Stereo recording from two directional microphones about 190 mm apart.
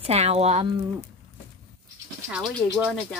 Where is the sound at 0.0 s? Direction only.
35° right (ahead or behind).